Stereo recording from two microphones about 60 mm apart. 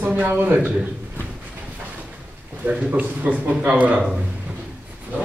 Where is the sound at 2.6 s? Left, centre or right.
Right.